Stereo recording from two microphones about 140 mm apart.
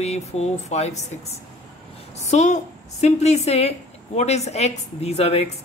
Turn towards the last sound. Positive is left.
turn(degrees=50)  # may be behind; listen again after turning